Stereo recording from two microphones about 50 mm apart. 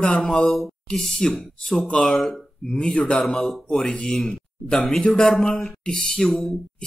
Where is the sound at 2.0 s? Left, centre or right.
Centre.